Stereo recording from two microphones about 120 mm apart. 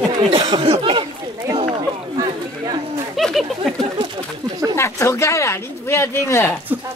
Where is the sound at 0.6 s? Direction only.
50° right (ahead or behind).